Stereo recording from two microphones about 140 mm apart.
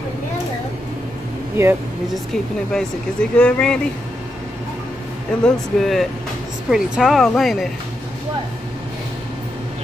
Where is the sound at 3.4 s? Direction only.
10° left (ahead or behind).